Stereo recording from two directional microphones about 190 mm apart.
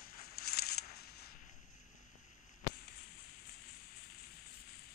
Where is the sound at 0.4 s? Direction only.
55° left (ahead or behind).